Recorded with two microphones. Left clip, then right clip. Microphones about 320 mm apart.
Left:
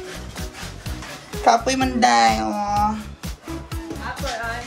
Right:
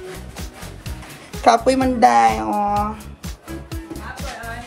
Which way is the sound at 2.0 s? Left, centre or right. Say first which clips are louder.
Right 2 dB; centre.